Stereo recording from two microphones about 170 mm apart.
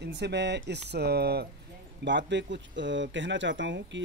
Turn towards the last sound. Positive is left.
turn(degrees=-90)